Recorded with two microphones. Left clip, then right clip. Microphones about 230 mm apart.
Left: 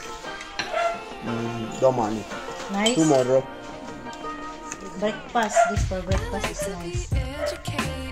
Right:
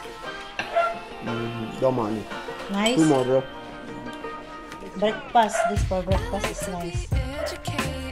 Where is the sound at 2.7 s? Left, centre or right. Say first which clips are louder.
Even; right.